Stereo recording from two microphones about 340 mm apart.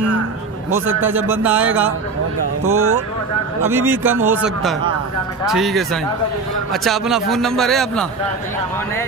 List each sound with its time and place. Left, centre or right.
1.1 s a man's voice: centre
2.6 s speech: right
3.6 s a man's voice: centre